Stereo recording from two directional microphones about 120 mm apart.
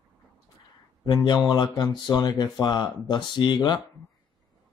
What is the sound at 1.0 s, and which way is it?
Speech, 35° left (ahead or behind).